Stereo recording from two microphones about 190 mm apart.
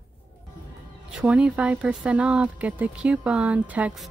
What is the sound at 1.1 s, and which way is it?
Speech, 5° right (ahead or behind).